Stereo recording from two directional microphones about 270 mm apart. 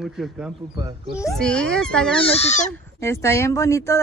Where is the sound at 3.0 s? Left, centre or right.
Centre.